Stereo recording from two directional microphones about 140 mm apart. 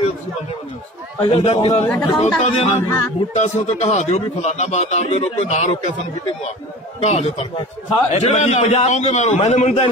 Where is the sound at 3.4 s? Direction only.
55° left (ahead or behind).